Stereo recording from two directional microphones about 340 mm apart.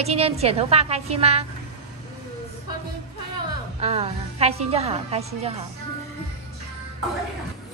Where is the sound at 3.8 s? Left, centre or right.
Centre.